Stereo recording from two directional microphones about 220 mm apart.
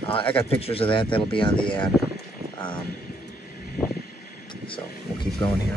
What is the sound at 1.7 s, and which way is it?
Speech, 5° left (ahead or behind).